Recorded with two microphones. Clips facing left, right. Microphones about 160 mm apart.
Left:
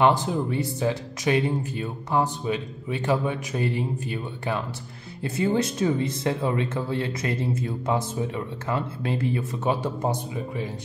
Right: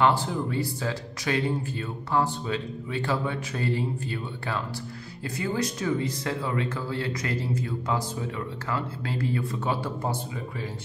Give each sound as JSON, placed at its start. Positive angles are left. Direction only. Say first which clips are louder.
{"t": 0.0, "sound": "speech", "louder": "left 3 dB", "side_deg": 20}